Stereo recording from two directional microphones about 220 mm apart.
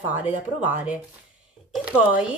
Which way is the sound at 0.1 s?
5° right (ahead or behind).